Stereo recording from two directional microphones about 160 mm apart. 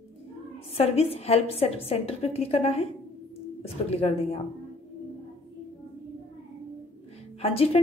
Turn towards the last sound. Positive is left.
turn(degrees=40)  # may be behind; listen again after turning